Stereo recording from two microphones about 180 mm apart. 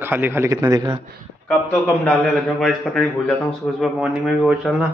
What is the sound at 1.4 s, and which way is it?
A man's voice, 10° left (ahead or behind).